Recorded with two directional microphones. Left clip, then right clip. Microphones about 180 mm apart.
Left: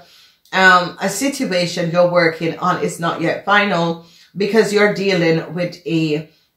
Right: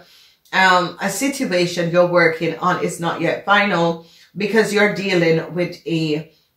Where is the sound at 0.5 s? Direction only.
30° left (ahead or behind).